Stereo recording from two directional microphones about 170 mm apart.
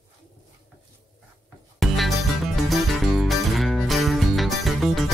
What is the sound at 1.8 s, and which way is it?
Music, centre (ahead or behind).